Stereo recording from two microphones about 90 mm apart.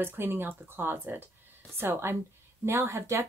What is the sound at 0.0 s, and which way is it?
Speech, 25° right (ahead or behind).